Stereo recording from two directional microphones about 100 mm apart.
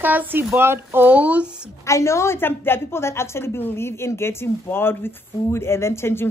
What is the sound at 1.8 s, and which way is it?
A woman's voice, 30° left (ahead or behind).